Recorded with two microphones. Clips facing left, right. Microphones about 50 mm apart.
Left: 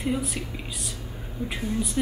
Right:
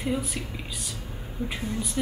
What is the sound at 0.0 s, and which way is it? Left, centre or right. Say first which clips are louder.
Speech: left 1 dB; centre.